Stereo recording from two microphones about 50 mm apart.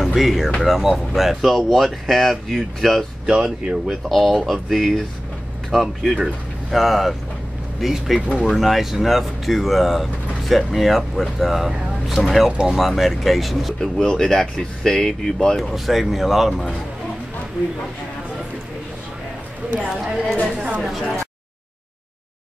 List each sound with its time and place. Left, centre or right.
0.0 s speech: centre
3.3 s speech: centre
4.1 s speech: centre
12.4 s speech: centre
12.7 s speech: centre
13.7 s speech: centre
15.7 s speech: centre
19.9 s speech: centre